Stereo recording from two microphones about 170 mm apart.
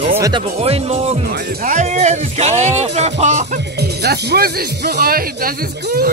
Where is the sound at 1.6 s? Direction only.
45° right (ahead or behind).